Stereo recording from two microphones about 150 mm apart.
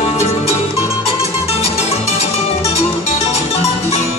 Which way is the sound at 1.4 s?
45° left (ahead or behind).